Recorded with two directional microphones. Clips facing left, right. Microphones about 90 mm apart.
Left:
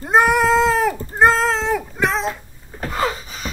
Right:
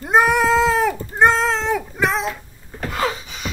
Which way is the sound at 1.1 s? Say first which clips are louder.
Left 1 dB; centre (ahead or behind).